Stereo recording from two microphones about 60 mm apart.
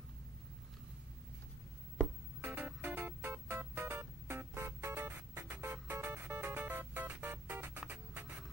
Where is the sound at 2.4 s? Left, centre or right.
Right.